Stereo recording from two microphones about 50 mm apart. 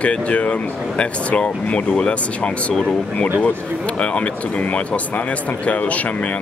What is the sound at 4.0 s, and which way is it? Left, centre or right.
Speech, left.